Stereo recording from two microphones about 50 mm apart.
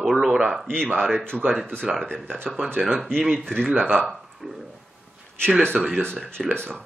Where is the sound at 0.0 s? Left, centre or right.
Centre.